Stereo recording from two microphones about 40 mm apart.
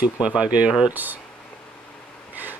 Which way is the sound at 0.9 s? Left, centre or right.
Right.